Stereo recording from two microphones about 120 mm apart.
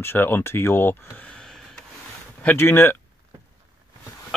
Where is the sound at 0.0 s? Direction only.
20° left (ahead or behind).